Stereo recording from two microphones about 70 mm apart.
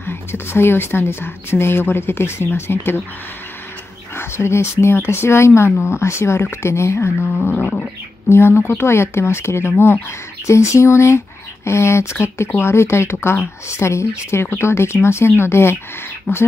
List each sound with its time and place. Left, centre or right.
0.0 s speech: left
4.1 s speech: left
7.5 s roaring cats: centre
8.3 s speech: left